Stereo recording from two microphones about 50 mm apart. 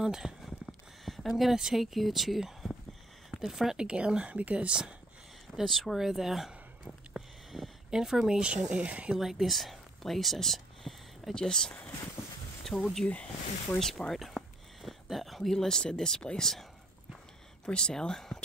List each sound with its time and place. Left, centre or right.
0.0 s speech: centre
0.4 s a sound: centre
3.3 s speech: centre
3.8 s speech: centre
5.6 s a sound: centre
8.4 s speech: right
9.2 s speech: centre
11.3 s speech: centre
13.0 s speech: left
13.7 s speech: centre
14.1 s a sound: centre
17.6 s speech: centre